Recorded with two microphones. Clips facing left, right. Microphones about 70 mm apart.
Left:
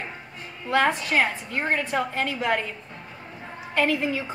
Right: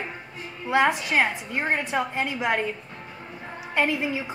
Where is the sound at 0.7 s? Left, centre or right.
Centre.